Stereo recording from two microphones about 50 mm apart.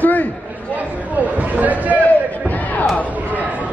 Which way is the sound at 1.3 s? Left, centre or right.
Right.